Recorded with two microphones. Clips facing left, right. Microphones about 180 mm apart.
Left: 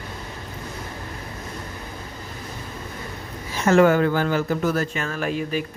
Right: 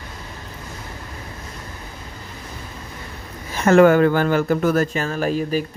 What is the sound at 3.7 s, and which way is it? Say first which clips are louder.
Speech: right 4 dB; 55° right (ahead or behind).